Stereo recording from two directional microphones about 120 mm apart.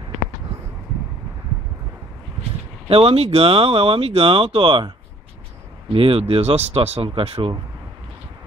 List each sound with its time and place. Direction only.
2.9 s speech: 55° right (ahead or behind)
5.9 s speech: 50° right (ahead or behind)